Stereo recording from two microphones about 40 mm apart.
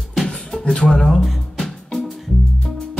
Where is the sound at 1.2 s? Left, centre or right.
Centre.